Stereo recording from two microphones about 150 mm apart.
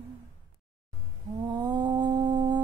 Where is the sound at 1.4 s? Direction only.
30° right (ahead or behind).